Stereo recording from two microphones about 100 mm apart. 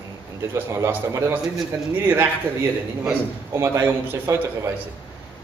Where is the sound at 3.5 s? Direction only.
30° right (ahead or behind).